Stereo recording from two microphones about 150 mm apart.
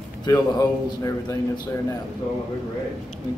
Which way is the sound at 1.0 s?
25° left (ahead or behind).